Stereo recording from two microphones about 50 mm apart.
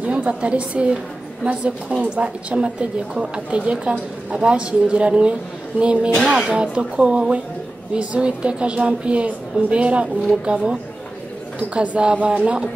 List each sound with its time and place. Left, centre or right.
0.0 s a woman's voice: right
6.3 s speech: centre
6.6 s a woman's voice: right